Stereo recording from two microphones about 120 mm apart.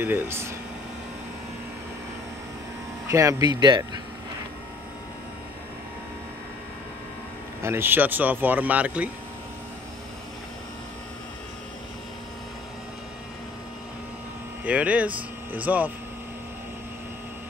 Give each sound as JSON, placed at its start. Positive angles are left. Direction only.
{"t": 0.0, "sound": "speech", "side_deg": -20}
{"t": 3.1, "sound": "speech", "side_deg": -25}
{"t": 7.6, "sound": "speech", "side_deg": -20}
{"t": 14.6, "sound": "speech", "side_deg": -10}